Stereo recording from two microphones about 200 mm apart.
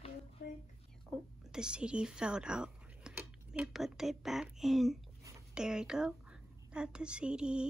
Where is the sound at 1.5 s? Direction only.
5° right (ahead or behind).